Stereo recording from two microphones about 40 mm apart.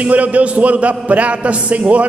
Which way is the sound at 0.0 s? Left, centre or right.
Right.